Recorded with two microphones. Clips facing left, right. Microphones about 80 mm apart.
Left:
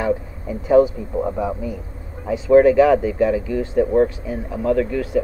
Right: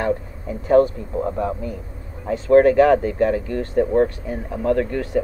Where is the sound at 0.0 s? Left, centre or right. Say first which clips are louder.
Left 1 dB; centre.